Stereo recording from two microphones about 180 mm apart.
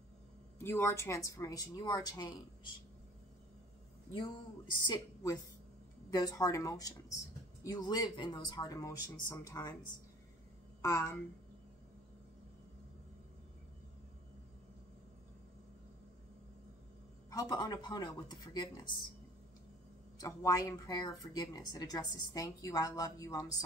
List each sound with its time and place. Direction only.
0.6 s speech: 15° left (ahead or behind)
4.8 s speech: 20° left (ahead or behind)
10.8 s a woman's voice: 20° left (ahead or behind)
17.3 s speech: 20° left (ahead or behind)
20.2 s speech: 20° left (ahead or behind)